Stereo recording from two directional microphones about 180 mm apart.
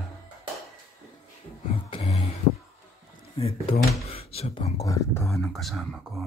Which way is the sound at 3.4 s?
35° left (ahead or behind).